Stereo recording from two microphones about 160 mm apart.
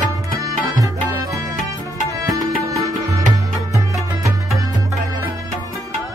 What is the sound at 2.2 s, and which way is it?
Music, 20° right (ahead or behind).